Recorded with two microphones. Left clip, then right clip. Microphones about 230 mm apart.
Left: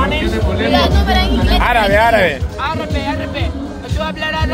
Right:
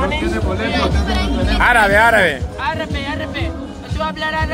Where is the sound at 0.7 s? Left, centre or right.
Left.